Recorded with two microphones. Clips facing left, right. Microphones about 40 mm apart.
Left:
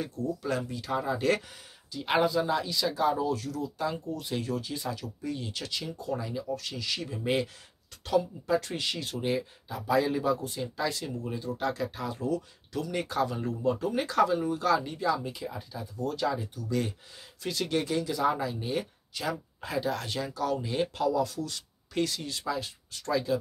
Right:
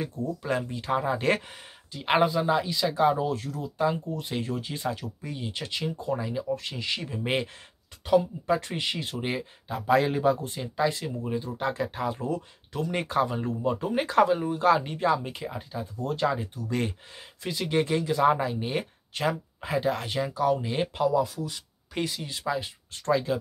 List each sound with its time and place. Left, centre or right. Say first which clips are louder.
0.0 s speech: right 1 dB; right
17.5 s speech: right 3 dB; right